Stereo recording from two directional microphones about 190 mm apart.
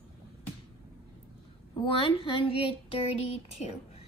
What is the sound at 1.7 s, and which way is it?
Speech, 25° left (ahead or behind).